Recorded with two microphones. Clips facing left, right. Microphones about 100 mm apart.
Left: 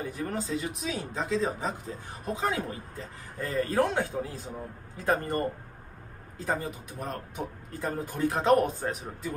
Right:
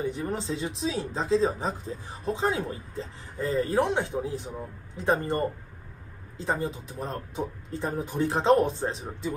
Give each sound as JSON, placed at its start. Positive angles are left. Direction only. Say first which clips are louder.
{"t": 0.0, "sound": "speech", "louder": "right 3 dB", "side_deg": -25}